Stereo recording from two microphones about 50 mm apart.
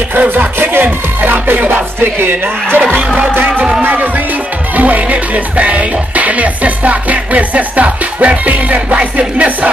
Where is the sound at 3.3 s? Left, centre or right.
Right.